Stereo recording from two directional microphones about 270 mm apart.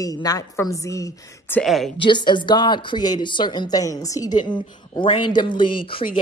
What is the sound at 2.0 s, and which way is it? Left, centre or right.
A woman's voice, centre.